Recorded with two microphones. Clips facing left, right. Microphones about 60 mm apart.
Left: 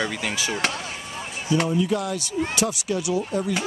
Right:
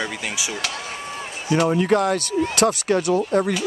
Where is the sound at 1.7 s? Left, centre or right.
Right.